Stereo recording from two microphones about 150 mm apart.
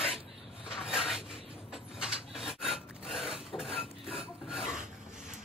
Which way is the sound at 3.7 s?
40° left (ahead or behind).